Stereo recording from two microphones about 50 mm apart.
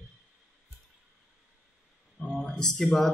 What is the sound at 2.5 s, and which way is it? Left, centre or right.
Speech, centre.